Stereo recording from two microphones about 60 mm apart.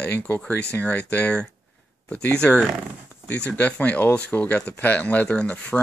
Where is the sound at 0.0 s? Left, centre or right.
Left.